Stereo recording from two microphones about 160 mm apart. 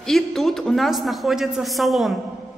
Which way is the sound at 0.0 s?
Centre (ahead or behind).